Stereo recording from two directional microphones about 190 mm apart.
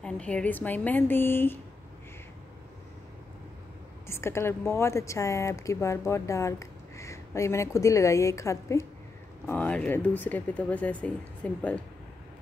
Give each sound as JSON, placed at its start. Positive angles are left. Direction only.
{"t": 0.0, "sound": "a woman's voice", "side_deg": 5}
{"t": 4.1, "sound": "a woman's voice", "side_deg": 15}